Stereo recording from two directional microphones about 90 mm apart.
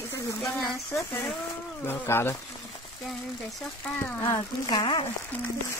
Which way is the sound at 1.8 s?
25° left (ahead or behind).